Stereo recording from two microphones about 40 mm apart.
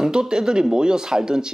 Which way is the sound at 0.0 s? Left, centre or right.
Centre.